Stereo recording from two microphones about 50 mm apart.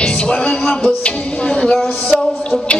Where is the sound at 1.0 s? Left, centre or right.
Centre.